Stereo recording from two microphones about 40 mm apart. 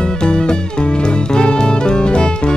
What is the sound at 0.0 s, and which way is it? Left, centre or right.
Music, left.